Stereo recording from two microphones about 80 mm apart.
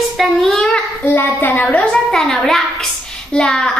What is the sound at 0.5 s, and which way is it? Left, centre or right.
Child singing, centre.